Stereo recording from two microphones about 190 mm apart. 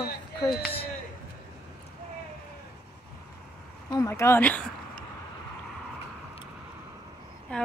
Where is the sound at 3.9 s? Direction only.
15° left (ahead or behind).